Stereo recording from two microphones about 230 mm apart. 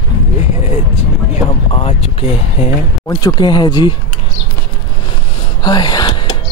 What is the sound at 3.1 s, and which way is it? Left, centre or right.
Speech, centre.